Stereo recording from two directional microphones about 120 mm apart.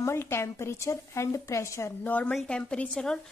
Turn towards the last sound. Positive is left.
turn(degrees=10)  # may be behind; listen again after turning